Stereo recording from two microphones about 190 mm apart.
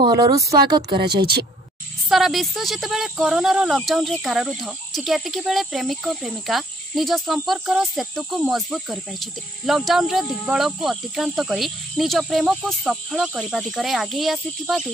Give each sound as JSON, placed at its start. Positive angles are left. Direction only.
{"t": 0.0, "sound": "a woman's voice", "side_deg": -20}
{"t": 1.0, "sound": "speech", "side_deg": -55}
{"t": 2.0, "sound": "speech", "side_deg": 0}